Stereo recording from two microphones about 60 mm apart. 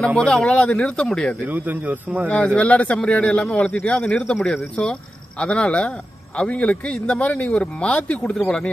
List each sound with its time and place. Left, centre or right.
0.2 s speech: centre
1.5 s speech: right
2.2 s speech: left